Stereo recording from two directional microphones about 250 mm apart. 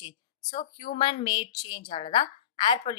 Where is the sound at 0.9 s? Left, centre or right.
Centre.